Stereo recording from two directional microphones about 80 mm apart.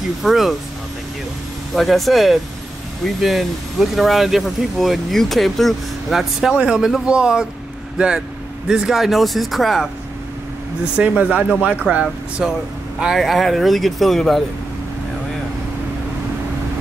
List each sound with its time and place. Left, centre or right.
0.2 s speech: centre
1.8 s speech: centre
8.6 s speech: centre
11.0 s speech: centre